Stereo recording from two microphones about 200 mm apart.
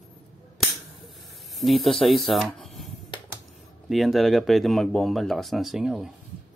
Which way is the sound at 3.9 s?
Centre (ahead or behind).